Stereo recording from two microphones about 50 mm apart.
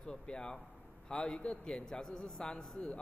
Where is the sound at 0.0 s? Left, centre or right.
Centre.